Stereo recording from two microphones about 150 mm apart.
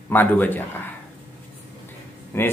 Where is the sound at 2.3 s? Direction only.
20° left (ahead or behind).